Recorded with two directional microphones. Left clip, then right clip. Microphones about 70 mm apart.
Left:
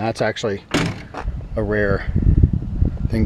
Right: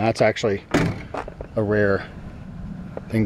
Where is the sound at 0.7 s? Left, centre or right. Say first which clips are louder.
Left 1 dB; left.